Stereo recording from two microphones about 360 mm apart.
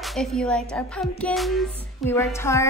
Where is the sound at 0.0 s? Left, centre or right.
Centre.